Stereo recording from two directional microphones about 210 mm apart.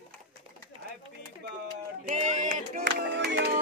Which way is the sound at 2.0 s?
35° right (ahead or behind).